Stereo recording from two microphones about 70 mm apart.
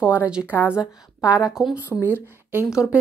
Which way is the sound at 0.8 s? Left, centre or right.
Left.